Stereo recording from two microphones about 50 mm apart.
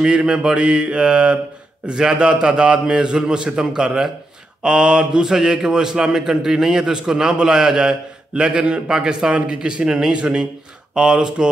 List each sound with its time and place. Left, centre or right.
0.0 s a man's voice: centre